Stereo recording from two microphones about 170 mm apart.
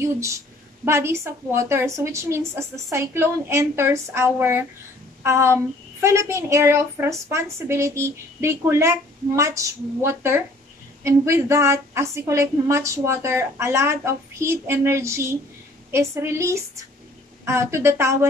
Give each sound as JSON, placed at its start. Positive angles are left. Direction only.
{"t": 0.0, "sound": "a woman's voice", "side_deg": -15}